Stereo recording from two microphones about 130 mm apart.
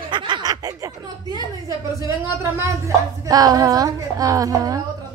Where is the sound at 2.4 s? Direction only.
25° right (ahead or behind).